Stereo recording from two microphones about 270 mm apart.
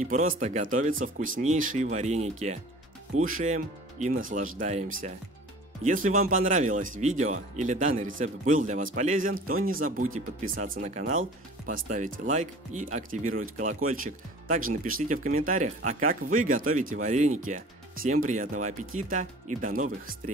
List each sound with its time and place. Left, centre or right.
0.0 s speech: right